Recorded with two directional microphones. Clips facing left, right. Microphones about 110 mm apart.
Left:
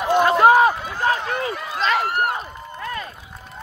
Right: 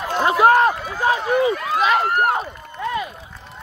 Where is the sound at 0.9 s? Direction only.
15° right (ahead or behind).